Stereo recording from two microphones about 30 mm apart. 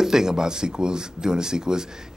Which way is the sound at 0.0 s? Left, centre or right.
Centre.